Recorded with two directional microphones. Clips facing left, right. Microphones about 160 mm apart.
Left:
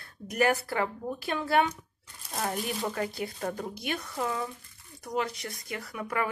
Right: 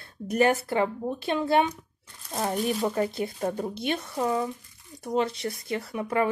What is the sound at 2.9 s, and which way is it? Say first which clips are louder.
A woman's voice: right 5 dB; 25° right (ahead or behind).